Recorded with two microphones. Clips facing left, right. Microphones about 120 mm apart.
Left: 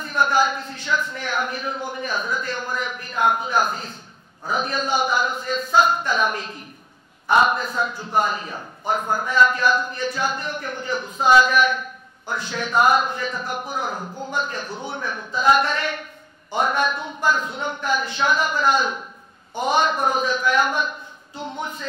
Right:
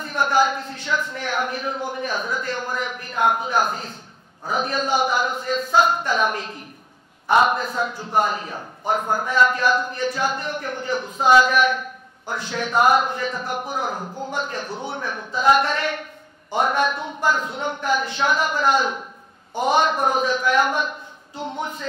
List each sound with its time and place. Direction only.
0.0 s a man's voice: 50° right (ahead or behind)
9.3 s speech: 55° right (ahead or behind)
13.9 s a man's voice: 25° right (ahead or behind)
14.3 s a man's voice: 55° right (ahead or behind)
14.9 s speech: 45° right (ahead or behind)
15.3 s a man's voice: 55° right (ahead or behind)